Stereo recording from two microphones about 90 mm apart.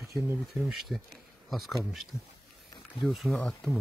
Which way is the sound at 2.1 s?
30° left (ahead or behind).